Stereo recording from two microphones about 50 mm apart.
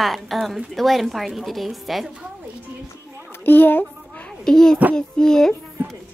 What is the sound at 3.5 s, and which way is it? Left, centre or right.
Speech, left.